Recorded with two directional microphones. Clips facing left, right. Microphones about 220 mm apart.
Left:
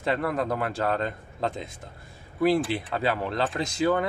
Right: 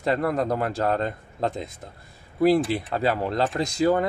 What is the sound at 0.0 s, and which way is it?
Speech, 40° right (ahead or behind).